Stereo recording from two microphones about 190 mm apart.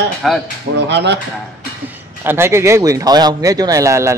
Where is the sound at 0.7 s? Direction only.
65° right (ahead or behind).